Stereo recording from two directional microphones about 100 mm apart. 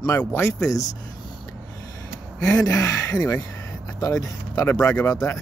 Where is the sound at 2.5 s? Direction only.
35° left (ahead or behind).